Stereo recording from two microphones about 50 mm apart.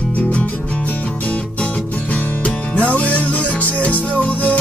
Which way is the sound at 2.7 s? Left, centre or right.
Left.